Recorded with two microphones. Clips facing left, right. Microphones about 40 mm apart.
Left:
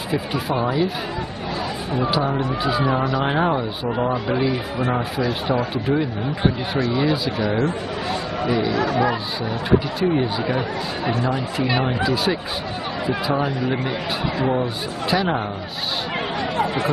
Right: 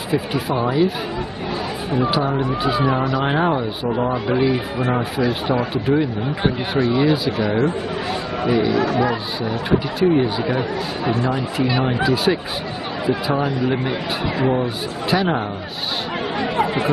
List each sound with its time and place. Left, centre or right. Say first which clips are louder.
0.1 s speech: right 2 dB; centre
13.4 s speech: right 2 dB; centre
16.3 s chatter: right 3 dB; centre